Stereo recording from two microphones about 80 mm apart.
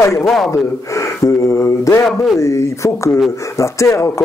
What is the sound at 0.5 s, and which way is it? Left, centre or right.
Speech, left.